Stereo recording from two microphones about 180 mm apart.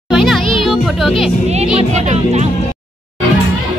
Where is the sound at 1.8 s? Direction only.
40° right (ahead or behind).